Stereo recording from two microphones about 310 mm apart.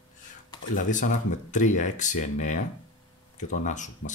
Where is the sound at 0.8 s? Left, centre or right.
Left.